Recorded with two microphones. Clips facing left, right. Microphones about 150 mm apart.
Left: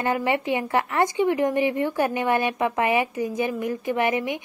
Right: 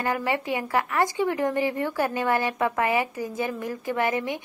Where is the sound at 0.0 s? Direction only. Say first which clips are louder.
Left 3 dB; 20° left (ahead or behind).